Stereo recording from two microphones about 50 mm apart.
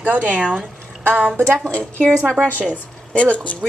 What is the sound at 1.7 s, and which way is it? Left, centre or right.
Speech, left.